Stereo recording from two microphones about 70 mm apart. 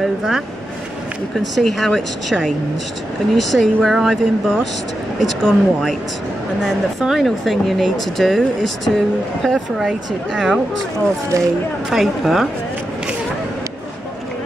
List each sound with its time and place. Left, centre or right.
0.0 s speech: centre
1.4 s speech: centre
11.3 s speech: right
11.9 s speech: centre